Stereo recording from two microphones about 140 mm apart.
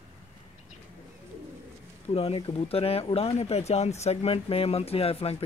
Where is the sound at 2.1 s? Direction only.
45° left (ahead or behind).